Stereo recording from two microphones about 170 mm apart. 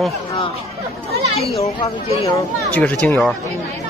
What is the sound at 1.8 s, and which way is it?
Speech, 25° left (ahead or behind).